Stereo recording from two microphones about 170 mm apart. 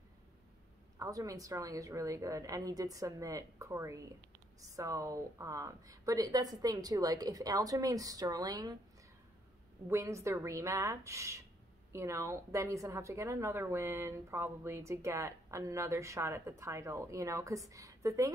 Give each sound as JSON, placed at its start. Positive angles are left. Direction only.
{"t": 0.9, "sound": "a woman's voice", "side_deg": -20}
{"t": 9.8, "sound": "a woman's voice", "side_deg": -15}